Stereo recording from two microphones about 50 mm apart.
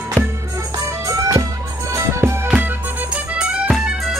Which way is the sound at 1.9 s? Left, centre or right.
Right.